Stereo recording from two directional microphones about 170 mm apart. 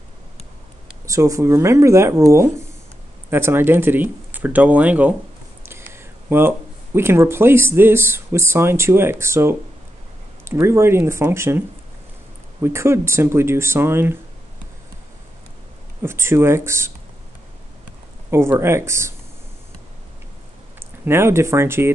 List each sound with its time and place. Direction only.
1.0 s speech: 20° right (ahead or behind)
12.6 s speech: 15° right (ahead or behind)
16.0 s speech: 15° right (ahead or behind)
18.3 s speech: 15° right (ahead or behind)
21.0 s speech: 15° right (ahead or behind)